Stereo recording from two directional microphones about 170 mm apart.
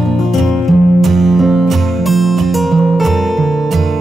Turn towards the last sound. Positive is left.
turn(degrees=0)  # may be behind; listen again after turning